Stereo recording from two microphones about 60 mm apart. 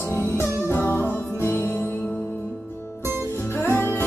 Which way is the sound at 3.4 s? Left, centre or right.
Left.